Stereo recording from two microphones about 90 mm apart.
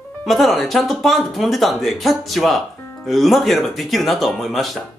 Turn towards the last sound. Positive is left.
turn(degrees=0)  # may be behind; listen again after turning